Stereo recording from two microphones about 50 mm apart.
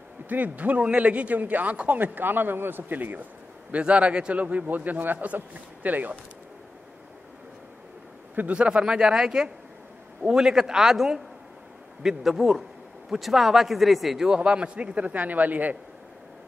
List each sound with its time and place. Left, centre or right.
0.3 s speech: right
3.7 s a man's voice: right
8.5 s a man's voice: centre; by 15.8 s right